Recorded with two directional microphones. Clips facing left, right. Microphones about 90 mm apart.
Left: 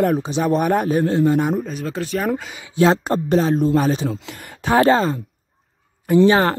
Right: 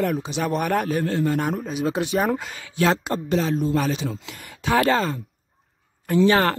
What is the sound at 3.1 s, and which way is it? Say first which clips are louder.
Speech: left 5 dB; 40° left (ahead or behind).